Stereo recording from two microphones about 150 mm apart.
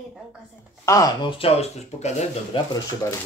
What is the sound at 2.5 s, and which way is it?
Speech, 35° left (ahead or behind).